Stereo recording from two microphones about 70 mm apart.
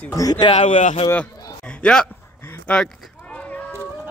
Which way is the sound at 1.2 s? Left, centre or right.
Centre.